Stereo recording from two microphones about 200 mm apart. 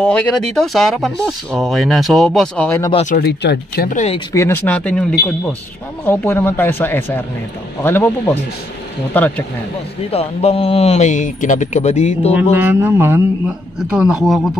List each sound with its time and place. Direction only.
0.0 s a man's voice: 5° left (ahead or behind)
2.9 s a man's voice: 35° left (ahead or behind)
3.2 s speech: 50° left (ahead or behind)
4.3 s speech: 15° left (ahead or behind)
6.0 s speech: 10° left (ahead or behind)
10.1 s a man's voice: 30° left (ahead or behind)
12.4 s a man's voice: 10° right (ahead or behind)